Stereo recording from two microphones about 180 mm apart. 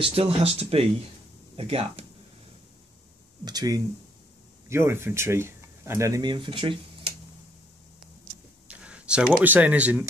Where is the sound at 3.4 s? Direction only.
20° right (ahead or behind).